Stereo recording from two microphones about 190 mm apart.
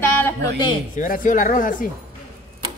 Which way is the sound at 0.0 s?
20° left (ahead or behind).